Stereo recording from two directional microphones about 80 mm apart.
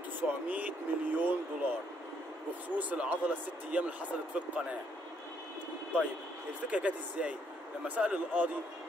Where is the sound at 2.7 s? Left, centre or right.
Centre.